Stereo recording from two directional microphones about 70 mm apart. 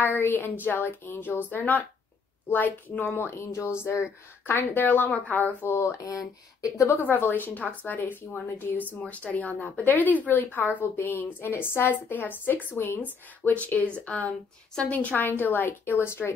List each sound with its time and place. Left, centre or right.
0.0 s speech: left
3.3 s speech: left
5.8 s speech: left
7.0 s speech: left